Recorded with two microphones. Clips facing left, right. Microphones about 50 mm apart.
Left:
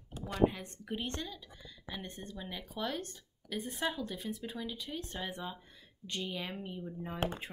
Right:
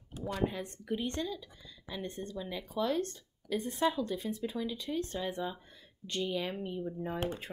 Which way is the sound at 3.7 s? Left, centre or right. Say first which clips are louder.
Right 6 dB; centre.